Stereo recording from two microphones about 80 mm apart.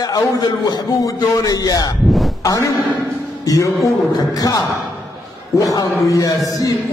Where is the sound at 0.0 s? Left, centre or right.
Left.